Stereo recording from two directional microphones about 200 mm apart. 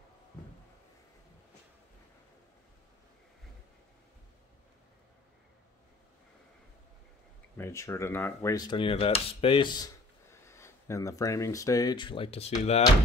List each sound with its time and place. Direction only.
7.5 s cutlery: 15° left (ahead or behind)
10.3 s speech: 15° left (ahead or behind); by 12.5 s 30° left (ahead or behind)